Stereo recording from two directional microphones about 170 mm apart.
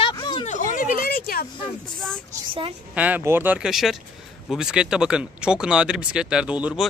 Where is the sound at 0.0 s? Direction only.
25° left (ahead or behind).